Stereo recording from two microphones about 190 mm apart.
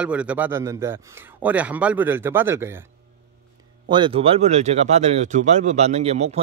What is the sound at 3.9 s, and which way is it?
Speech, 30° right (ahead or behind).